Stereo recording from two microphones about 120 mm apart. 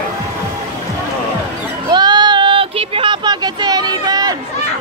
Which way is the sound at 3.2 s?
35° right (ahead or behind).